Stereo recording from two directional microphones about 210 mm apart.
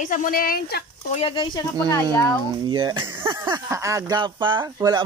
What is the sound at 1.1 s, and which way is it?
Speech, 25° left (ahead or behind).